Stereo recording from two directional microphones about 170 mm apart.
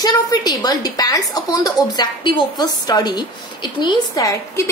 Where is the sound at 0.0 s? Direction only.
20° left (ahead or behind).